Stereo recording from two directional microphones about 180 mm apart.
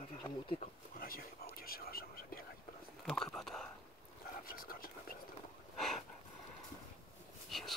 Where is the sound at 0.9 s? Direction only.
55° left (ahead or behind).